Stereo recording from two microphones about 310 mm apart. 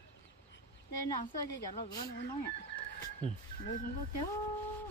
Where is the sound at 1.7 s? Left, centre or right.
Centre.